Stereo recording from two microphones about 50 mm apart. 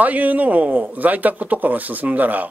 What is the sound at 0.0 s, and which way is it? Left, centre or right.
A man's voice, right.